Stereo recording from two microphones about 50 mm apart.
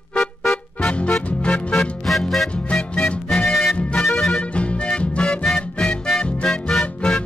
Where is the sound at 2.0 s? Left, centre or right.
Centre.